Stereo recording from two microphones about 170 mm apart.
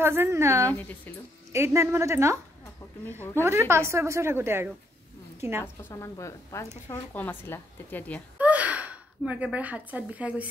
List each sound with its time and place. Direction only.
0.0 s a woman's voice: 15° right (ahead or behind)
3.4 s a woman's voice: 15° right (ahead or behind)
5.9 s a woman's voice: 15° left (ahead or behind)
8.4 s speech: 10° right (ahead or behind)